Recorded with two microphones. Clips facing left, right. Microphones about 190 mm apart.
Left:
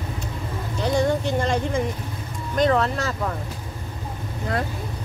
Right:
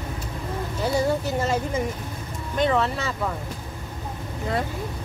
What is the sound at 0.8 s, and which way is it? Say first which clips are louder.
Speech: left 2 dB; 5° right (ahead or behind).